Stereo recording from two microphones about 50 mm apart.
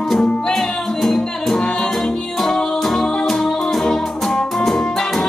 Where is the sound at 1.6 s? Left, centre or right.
Centre.